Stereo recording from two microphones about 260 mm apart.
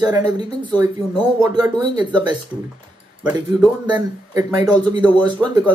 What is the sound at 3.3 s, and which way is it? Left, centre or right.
Speech, centre.